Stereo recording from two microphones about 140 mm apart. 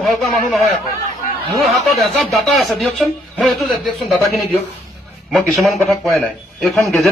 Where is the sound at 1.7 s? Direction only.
Centre (ahead or behind).